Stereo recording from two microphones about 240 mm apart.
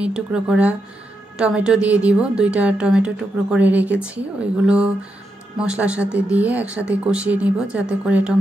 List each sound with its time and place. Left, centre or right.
0.0 s speech: centre